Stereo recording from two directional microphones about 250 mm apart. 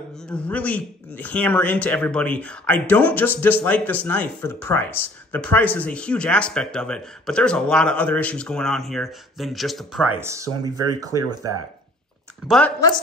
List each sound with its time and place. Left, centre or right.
0.3 s speech: centre
10.2 s speech: centre
11.2 s speech: right
12.4 s speech: centre